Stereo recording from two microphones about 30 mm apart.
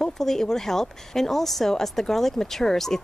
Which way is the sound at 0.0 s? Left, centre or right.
Centre.